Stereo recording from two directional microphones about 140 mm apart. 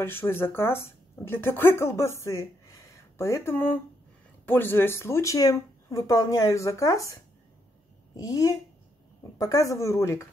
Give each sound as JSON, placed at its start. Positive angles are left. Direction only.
{"t": 0.0, "sound": "speech", "side_deg": 15}